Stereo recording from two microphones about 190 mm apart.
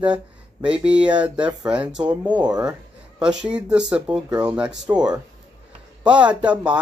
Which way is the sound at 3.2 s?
5° right (ahead or behind).